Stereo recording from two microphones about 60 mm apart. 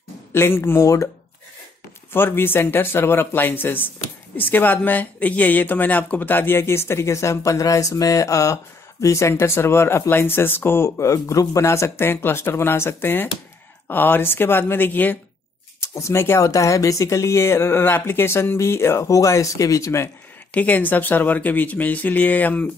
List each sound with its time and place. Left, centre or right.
0.3 s speech: left
0.7 s speech: left
2.1 s speech: left
9.3 s speech: left
12.1 s speech: left
15.8 s speech: left
16.3 s speech: left
20.5 s speech: left